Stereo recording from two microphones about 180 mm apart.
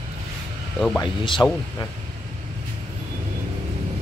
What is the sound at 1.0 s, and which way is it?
Speech, 25° left (ahead or behind).